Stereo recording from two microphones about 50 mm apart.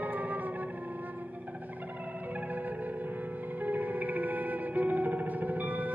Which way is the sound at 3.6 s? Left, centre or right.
Right.